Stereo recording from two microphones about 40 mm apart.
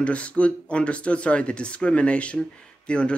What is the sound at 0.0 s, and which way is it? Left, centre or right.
Speech, left.